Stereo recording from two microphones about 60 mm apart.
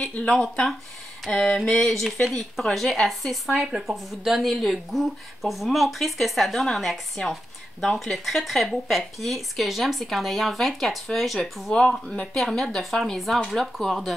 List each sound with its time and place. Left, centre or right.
0.3 s speech: centre